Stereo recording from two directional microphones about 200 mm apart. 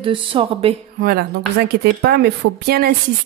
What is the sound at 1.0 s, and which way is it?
Speech, 50° right (ahead or behind).